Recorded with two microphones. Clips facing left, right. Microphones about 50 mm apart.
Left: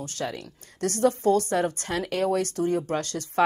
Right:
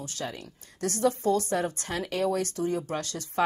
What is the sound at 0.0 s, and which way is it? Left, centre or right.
A woman's voice, left.